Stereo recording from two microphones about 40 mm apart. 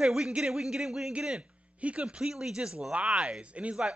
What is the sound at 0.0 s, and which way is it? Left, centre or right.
A man's voice, centre.